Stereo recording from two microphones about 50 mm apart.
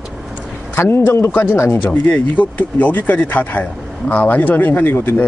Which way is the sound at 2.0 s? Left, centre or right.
Left.